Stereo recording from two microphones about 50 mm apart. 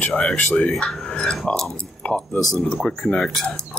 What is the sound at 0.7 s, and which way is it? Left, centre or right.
Speech, centre.